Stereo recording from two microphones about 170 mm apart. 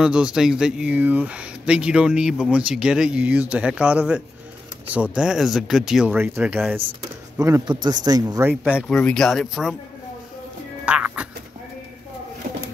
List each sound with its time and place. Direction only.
0.0 s speech: 5° right (ahead or behind)
8.8 s speech: 5° left (ahead or behind)
10.9 s music: 5° right (ahead or behind)